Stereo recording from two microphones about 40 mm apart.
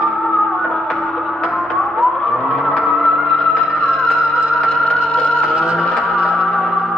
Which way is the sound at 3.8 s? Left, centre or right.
Centre.